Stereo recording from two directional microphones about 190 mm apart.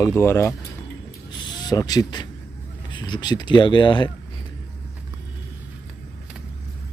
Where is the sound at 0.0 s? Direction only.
15° left (ahead or behind).